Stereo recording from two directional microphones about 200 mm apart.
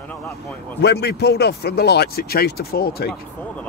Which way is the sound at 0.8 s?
55° left (ahead or behind).